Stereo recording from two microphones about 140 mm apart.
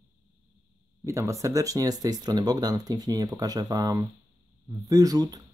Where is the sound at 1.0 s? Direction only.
20° right (ahead or behind).